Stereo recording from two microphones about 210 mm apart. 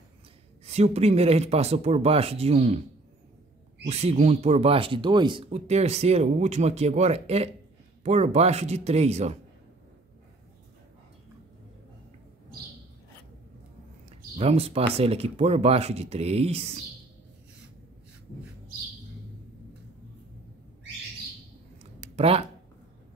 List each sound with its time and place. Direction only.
0.7 s speech: 30° right (ahead or behind)
3.8 s speech: 30° right (ahead or behind)
14.3 s speech: 30° right (ahead or behind)
22.1 s speech: 30° right (ahead or behind)